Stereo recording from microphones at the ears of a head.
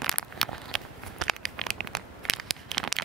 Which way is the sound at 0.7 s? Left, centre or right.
Right.